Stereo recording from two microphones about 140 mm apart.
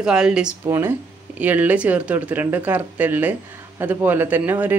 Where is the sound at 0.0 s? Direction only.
5° right (ahead or behind).